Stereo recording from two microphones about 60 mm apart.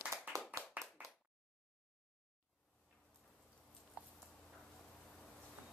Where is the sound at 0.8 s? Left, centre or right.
Right.